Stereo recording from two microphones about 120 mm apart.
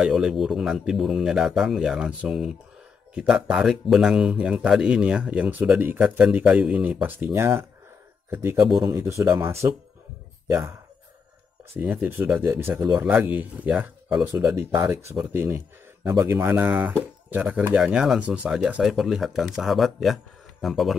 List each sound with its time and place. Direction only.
0.0 s speech: 5° right (ahead or behind)
8.7 s speech: 30° right (ahead or behind)
11.8 s speech: 15° right (ahead or behind)
14.2 s speech: 25° right (ahead or behind)
15.1 s speech: 15° right (ahead or behind)